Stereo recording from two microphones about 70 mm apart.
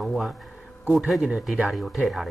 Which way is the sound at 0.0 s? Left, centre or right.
Centre.